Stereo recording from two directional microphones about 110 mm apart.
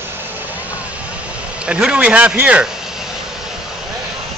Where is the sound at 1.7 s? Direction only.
10° right (ahead or behind).